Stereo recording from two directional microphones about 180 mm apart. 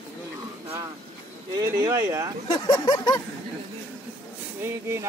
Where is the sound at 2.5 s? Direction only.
25° left (ahead or behind).